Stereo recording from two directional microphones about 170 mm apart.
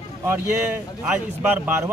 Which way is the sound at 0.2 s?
15° right (ahead or behind).